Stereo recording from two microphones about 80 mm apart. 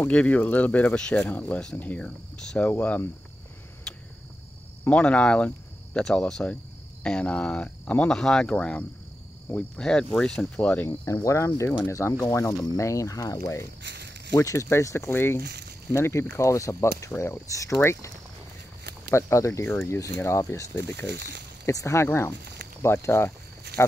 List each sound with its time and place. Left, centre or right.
0.0 s speech: centre
3.9 s cricket: centre
4.8 s speech: centre
11.2 s speech: left
19.6 s speech: left
20.2 s speech: left